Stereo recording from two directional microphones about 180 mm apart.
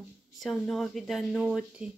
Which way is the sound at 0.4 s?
Centre (ahead or behind).